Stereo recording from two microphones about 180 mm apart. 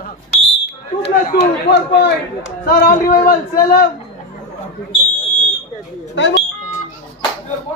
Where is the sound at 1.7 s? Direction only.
75° left (ahead or behind); by 3.9 s 55° left (ahead or behind).